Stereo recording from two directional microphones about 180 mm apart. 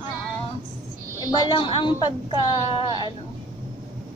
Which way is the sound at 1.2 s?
20° left (ahead or behind).